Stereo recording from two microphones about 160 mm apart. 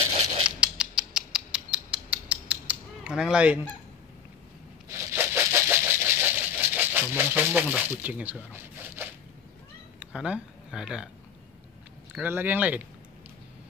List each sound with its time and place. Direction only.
0.0 s a sound: 40° right (ahead or behind)
0.6 s rodents: 5° right (ahead or behind)
2.7 s fowl: 5° right (ahead or behind)
4.8 s a sound: 15° right (ahead or behind)
9.9 s speech: 5° right (ahead or behind)
12.1 s speech: 10° right (ahead or behind)